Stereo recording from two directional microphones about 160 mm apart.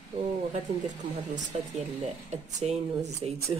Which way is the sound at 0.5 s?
50° right (ahead or behind).